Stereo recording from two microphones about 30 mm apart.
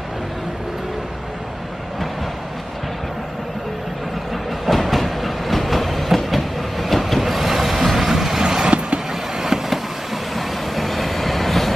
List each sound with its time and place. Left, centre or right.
4.6 s train: centre
8.4 s vehicle: centre
8.6 s vehicle: right
9.4 s vehicle: centre